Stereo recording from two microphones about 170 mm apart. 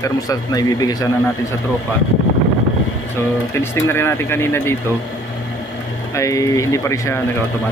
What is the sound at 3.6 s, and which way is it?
Speech, 15° left (ahead or behind).